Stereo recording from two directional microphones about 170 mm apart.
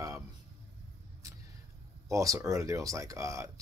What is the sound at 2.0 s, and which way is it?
Speech, 20° right (ahead or behind).